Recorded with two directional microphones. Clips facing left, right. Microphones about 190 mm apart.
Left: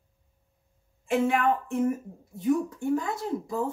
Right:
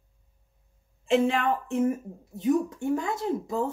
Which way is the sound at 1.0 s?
25° right (ahead or behind).